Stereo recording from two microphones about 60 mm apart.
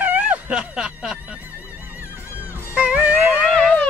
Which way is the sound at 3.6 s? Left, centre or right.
Left.